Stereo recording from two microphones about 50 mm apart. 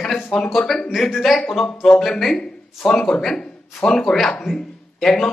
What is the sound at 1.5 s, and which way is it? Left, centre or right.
Speech, centre.